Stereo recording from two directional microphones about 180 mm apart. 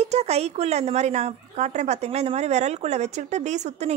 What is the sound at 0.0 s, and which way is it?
Speech, 35° right (ahead or behind).